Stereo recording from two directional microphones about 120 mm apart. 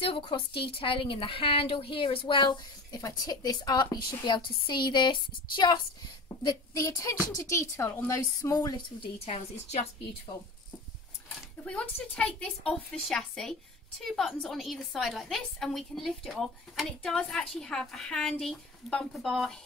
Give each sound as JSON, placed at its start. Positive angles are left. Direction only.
{"t": 0.0, "sound": "a woman's voice", "side_deg": 45}
{"t": 9.2, "sound": "a woman's voice", "side_deg": 55}
{"t": 11.6, "sound": "a woman's voice", "side_deg": 10}